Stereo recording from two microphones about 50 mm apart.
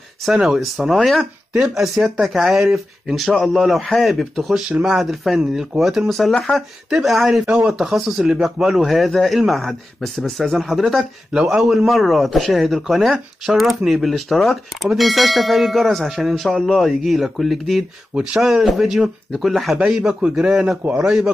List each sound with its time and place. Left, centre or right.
0.5 s speech: centre
11.3 s speech: centre
18.1 s speech: centre
18.4 s speech: centre